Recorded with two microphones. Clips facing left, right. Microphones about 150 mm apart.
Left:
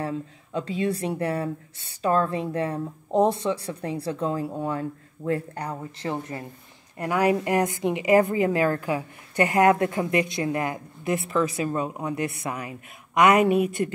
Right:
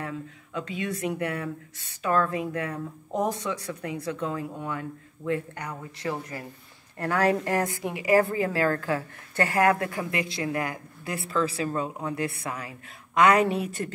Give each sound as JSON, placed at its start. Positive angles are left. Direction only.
{"t": 0.0, "sound": "speech", "side_deg": 30}
{"t": 7.0, "sound": "a woman's voice", "side_deg": 15}